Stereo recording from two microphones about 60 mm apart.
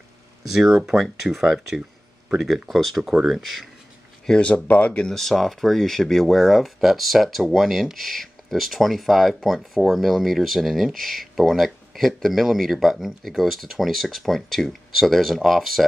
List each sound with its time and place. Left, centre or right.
0.5 s speech: centre
2.7 s speech: centre
3.0 s speech: centre
3.3 s speech: centre
4.3 s speech: centre
5.0 s speech: centre